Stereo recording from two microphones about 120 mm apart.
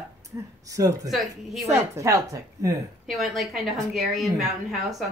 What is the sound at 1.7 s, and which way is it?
Speech, 25° right (ahead or behind).